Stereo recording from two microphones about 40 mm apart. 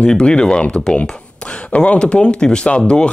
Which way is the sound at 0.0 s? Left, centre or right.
Left.